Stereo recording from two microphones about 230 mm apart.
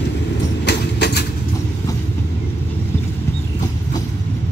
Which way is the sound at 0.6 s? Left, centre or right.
Left.